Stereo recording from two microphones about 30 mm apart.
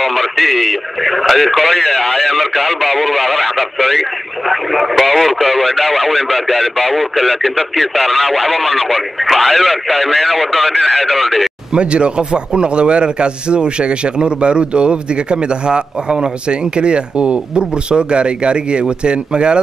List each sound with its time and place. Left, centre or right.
0.0 s speech: centre
11.7 s a man's voice: right